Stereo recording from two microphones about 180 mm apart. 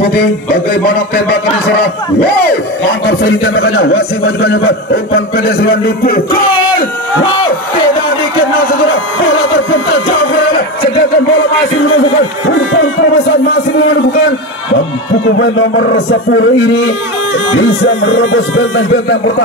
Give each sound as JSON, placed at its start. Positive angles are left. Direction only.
{"t": 0.0, "sound": "a man's voice", "side_deg": 55}
{"t": 15.3, "sound": "speech", "side_deg": 85}
{"t": 18.2, "sound": "speech", "side_deg": 90}